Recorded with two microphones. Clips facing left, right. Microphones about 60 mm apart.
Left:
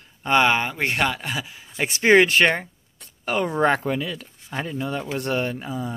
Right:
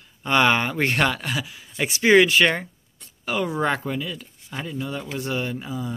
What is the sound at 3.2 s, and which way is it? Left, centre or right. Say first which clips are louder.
Speech: left 3 dB; left.